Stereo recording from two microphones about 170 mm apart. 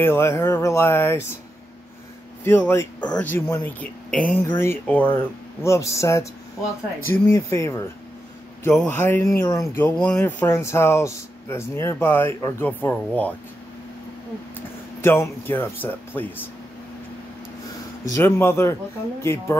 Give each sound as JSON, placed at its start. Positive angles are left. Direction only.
{"t": 0.0, "sound": "speech", "side_deg": 15}
{"t": 2.4, "sound": "speech", "side_deg": 10}
{"t": 15.0, "sound": "speech", "side_deg": 15}
{"t": 18.0, "sound": "speech", "side_deg": 15}